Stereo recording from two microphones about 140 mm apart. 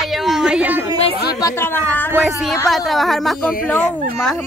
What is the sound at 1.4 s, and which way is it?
Speech, 15° left (ahead or behind).